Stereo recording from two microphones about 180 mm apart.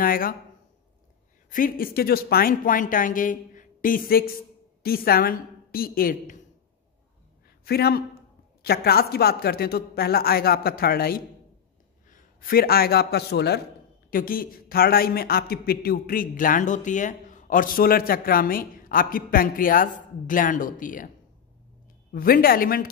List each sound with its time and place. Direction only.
0.0 s speech: 50° left (ahead or behind)
1.5 s a man's voice: 50° left (ahead or behind)
7.6 s a woman's voice: 60° left (ahead or behind)
14.1 s a man's voice: 55° left (ahead or behind)
22.1 s a man's voice: 55° left (ahead or behind)